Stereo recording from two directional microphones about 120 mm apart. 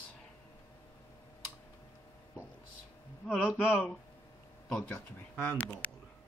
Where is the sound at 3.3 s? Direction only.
15° left (ahead or behind).